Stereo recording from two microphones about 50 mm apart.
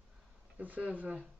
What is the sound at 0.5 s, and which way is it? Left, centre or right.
Speech, right.